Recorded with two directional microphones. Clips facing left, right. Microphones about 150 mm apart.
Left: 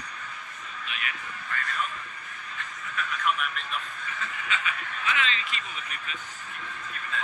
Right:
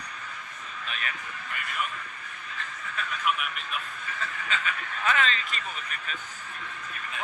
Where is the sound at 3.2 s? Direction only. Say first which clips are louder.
Left 1 dB; 5° right (ahead or behind).